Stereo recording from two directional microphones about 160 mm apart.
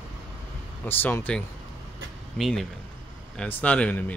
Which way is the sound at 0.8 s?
10° left (ahead or behind).